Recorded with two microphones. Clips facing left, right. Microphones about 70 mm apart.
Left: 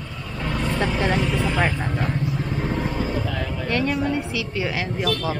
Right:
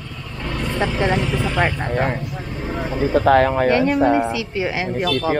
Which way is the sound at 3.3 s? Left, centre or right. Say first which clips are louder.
Right 15 dB; right.